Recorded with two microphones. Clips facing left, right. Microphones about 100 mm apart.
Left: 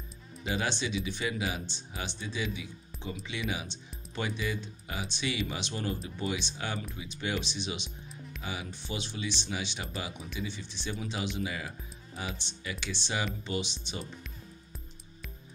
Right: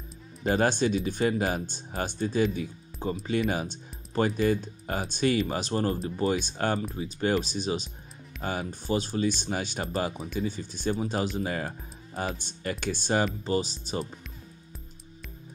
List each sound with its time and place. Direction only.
0.4 s speech: 45° right (ahead or behind)